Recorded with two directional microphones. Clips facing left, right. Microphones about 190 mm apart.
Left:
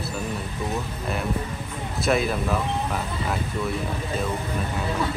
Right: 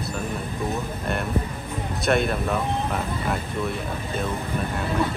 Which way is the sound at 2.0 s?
Centre (ahead or behind).